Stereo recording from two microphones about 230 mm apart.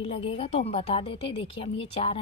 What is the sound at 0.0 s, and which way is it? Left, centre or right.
Speech, left.